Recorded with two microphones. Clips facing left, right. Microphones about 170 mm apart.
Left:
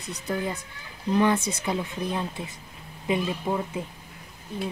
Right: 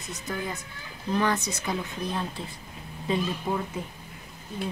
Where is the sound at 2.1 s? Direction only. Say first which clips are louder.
Left 2 dB; 15° left (ahead or behind).